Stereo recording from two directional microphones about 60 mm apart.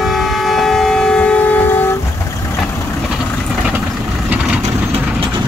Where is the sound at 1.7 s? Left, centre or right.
Left.